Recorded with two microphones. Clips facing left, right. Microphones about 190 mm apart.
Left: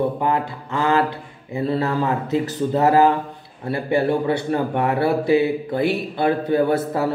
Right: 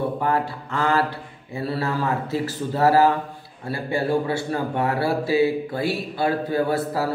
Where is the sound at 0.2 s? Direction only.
20° left (ahead or behind).